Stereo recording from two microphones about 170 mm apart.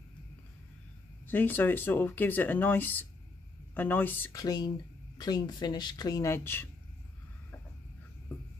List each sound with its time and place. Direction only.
1.2 s speech: 10° left (ahead or behind)